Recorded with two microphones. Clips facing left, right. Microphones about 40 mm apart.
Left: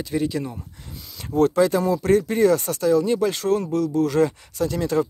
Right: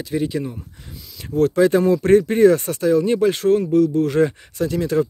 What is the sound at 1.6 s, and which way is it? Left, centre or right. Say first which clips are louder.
Speech: right 4 dB; right.